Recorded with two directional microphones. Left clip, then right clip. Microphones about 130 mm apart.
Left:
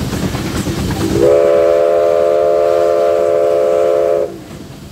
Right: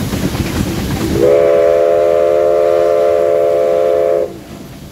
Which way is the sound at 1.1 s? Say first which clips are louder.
Even; 40° right (ahead or behind).